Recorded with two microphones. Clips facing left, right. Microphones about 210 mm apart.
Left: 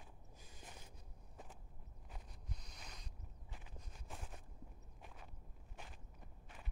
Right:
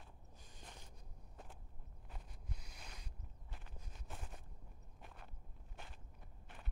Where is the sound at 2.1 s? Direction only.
5° right (ahead or behind).